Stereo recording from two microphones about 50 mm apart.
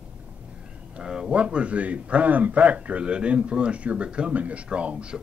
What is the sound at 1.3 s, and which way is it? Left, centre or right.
Speech, right.